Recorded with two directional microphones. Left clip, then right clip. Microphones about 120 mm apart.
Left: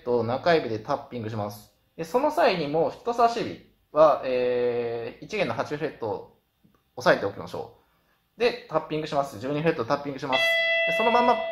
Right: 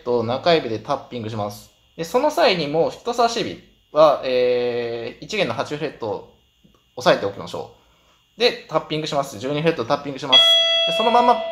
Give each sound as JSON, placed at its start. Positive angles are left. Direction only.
{"t": 0.0, "sound": "speech", "side_deg": -5}